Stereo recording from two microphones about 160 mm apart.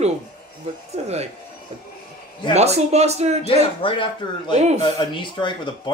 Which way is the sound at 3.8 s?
30° left (ahead or behind).